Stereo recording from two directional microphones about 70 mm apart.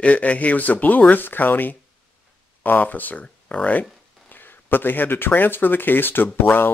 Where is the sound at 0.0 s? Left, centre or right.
Centre.